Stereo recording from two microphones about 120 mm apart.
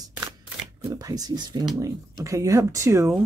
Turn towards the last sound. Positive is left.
turn(degrees=-25)  # may be behind; listen again after turning